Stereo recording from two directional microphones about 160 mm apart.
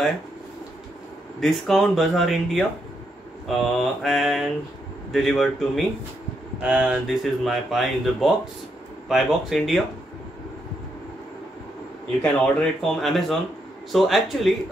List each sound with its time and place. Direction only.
1.4 s speech: centre (ahead or behind)
12.2 s speech: 5° left (ahead or behind)